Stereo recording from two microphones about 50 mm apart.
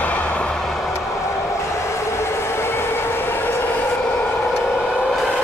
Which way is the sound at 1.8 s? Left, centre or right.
Left.